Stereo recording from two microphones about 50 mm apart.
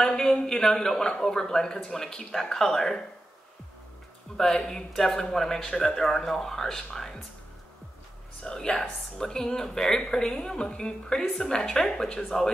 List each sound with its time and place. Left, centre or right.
0.0 s speech: centre
4.4 s speech: centre
8.4 s speech: centre